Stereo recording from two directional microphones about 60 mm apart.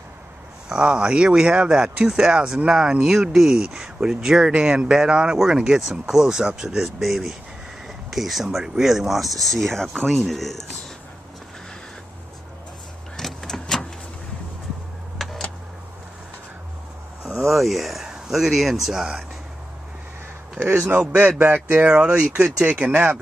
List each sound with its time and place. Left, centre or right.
0.7 s speech: centre
13.1 s power windows: centre
15.2 s a sound: centre
17.5 s speech: centre
20.7 s speech: right
21.0 s speech: right
21.3 s speech: right
21.7 s speech: centre
22.7 s speech: right